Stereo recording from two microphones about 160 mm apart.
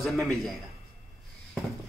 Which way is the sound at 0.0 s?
Centre (ahead or behind).